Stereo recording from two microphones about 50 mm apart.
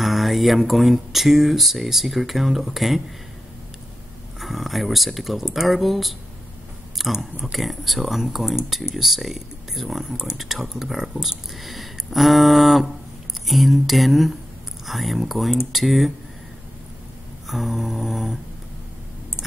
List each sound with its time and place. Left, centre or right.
0.0 s speech: centre
4.4 s speech: centre
10.0 s speech: centre
10.3 s speech: centre
17.5 s speech: centre